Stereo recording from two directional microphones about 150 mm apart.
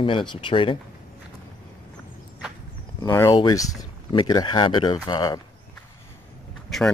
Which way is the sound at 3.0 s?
20° left (ahead or behind).